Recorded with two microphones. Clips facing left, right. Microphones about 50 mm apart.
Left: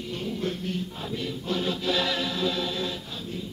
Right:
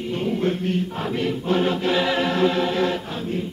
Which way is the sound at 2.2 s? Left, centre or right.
Right.